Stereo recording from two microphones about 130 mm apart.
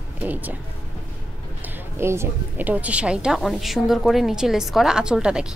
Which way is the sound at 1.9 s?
20° right (ahead or behind).